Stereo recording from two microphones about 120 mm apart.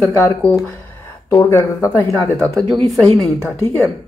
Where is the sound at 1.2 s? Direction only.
25° left (ahead or behind).